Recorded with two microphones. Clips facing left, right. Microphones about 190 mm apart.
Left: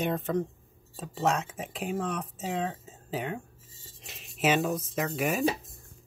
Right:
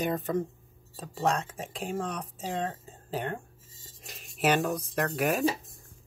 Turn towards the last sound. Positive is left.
turn(degrees=0)  # may be behind; listen again after turning